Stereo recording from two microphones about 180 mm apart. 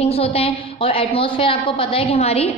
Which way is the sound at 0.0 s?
35° left (ahead or behind).